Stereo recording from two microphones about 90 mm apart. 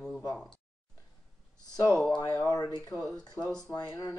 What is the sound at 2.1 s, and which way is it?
Speech, 50° left (ahead or behind).